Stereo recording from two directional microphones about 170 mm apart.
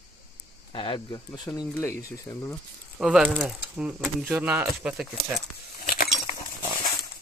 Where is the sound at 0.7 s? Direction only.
30° left (ahead or behind).